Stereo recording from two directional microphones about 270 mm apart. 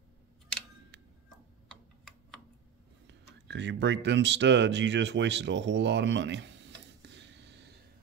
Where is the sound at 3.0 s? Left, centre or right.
Right.